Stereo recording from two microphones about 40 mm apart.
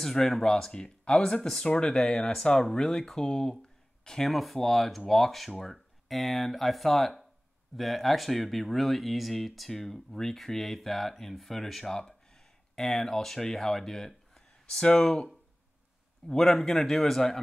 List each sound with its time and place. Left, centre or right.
0.0 s a man's voice: centre
4.3 s speech: centre; by 15.2 s left
16.3 s a man's voice: centre